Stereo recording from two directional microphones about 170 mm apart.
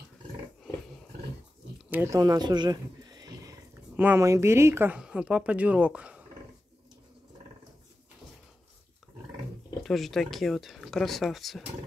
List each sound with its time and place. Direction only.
1.9 s wild animals: 15° right (ahead or behind)
3.9 s speech: 10° right (ahead or behind)
9.8 s speech: centre (ahead or behind)